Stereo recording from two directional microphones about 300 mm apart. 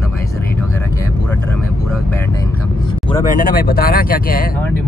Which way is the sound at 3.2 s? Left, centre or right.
Left.